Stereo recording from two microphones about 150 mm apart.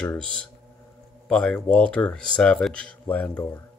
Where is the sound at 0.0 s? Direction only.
10° left (ahead or behind).